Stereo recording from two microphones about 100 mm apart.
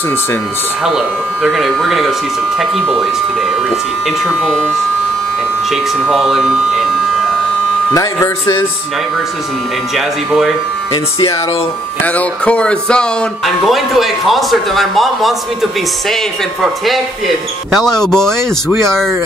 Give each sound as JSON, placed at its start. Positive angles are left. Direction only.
{"t": 0.8, "sound": "a man's voice", "side_deg": -5}
{"t": 5.7, "sound": "speech", "side_deg": 0}
{"t": 7.9, "sound": "speech", "side_deg": 35}
{"t": 9.9, "sound": "a man's voice", "side_deg": -5}
{"t": 12.0, "sound": "music", "side_deg": 15}
{"t": 13.7, "sound": "a man's voice", "side_deg": 0}
{"t": 16.6, "sound": "a man's voice", "side_deg": 0}